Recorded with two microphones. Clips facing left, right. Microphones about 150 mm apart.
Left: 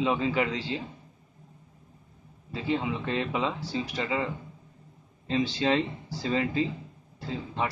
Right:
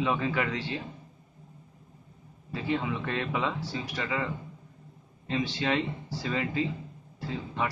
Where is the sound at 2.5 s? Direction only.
20° left (ahead or behind).